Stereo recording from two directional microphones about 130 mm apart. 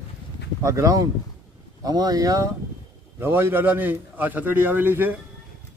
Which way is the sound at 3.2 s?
15° right (ahead or behind).